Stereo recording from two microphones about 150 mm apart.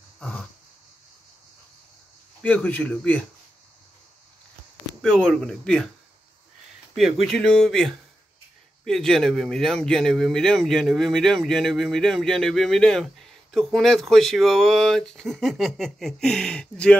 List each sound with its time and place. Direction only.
0.2 s a sound: 5° left (ahead or behind)
2.4 s speech: 10° left (ahead or behind)
5.0 s speech: 5° left (ahead or behind)
7.0 s speech: centre (ahead or behind)